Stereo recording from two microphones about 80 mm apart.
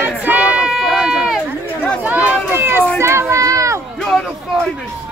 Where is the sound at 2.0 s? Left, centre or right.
Centre.